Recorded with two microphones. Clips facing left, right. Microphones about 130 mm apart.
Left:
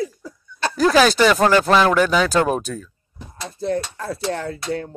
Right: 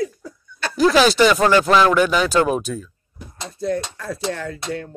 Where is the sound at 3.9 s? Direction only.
35° left (ahead or behind).